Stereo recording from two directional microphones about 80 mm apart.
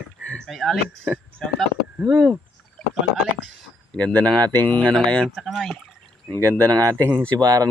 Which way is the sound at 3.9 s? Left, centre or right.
Centre.